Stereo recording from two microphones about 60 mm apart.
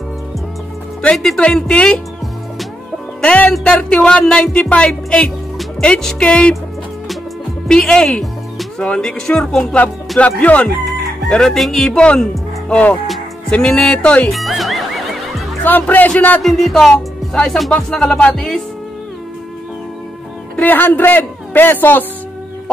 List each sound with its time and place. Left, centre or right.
1.1 s music: centre
1.7 s speech: centre
3.2 s music: left
3.6 s speech: centre
7.6 s music: centre
8.8 s speech: centre
10.1 s speech: left
11.5 s music: centre
12.6 s speech: centre
14.3 s music: centre
15.6 s speech: left
16.4 s music: centre
16.9 s speech: centre
20.5 s a man's voice: left